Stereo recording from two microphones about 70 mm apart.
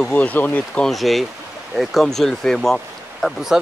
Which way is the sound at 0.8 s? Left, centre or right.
Centre.